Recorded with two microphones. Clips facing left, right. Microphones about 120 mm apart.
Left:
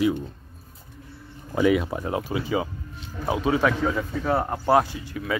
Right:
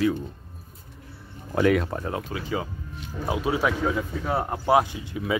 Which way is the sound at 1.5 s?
Centre (ahead or behind).